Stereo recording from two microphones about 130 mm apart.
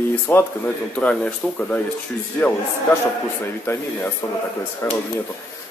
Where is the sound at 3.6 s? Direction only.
15° left (ahead or behind).